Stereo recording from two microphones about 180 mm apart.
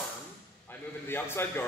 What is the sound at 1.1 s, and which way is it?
Speech, 10° left (ahead or behind).